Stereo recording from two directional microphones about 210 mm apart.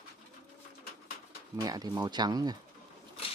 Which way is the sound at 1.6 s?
15° right (ahead or behind).